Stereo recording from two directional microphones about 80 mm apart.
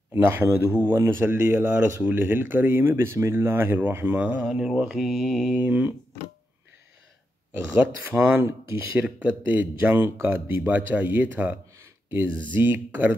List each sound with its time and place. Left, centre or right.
0.1 s speech: right; by 5.6 s centre
5.7 s speech: right
7.5 s speech: right
11.8 s a sound: right
12.5 s speech: right